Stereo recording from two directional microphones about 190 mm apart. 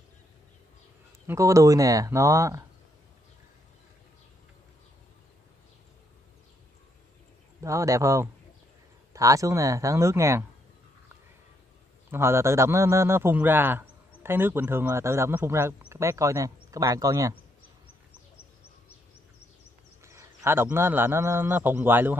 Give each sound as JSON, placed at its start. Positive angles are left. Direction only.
{"t": 1.2, "sound": "a man's voice", "side_deg": -15}
{"t": 7.6, "sound": "a man's voice", "side_deg": -15}
{"t": 12.1, "sound": "a man's voice", "side_deg": -15}
{"t": 20.0, "sound": "speech", "side_deg": -15}